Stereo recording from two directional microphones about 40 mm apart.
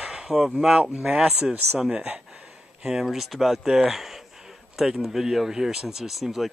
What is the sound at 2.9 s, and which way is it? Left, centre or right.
Speech, centre.